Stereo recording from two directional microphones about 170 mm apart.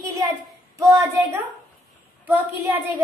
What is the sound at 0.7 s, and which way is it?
A woman's voice, 15° right (ahead or behind).